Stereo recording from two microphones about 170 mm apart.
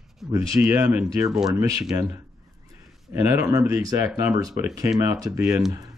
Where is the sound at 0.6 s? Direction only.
10° right (ahead or behind).